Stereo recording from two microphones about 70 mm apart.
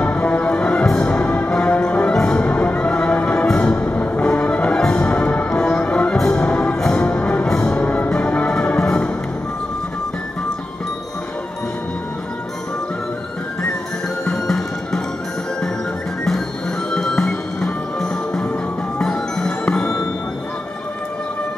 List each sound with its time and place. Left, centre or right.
0.0 s music: centre
14.3 s music: centre
16.9 s music: centre
18.9 s marimba: centre